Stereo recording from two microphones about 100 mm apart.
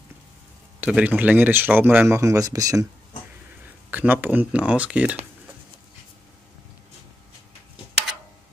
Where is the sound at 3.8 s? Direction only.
15° right (ahead or behind).